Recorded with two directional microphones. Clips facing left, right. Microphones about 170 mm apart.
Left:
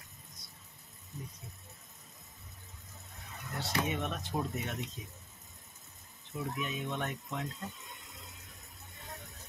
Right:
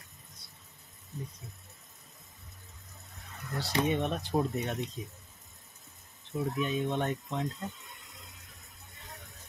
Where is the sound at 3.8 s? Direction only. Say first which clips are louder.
Right 6 dB; 35° right (ahead or behind).